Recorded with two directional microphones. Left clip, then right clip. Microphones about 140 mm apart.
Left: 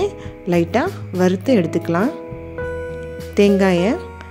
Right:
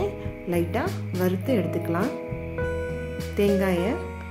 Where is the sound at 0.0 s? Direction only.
60° left (ahead or behind).